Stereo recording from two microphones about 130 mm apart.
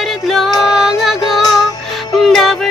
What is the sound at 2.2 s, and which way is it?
Music, centre (ahead or behind).